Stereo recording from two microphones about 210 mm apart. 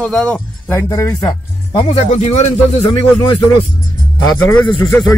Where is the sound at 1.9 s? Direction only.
30° left (ahead or behind).